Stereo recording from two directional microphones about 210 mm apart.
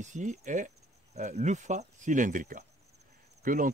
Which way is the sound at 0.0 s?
35° right (ahead or behind).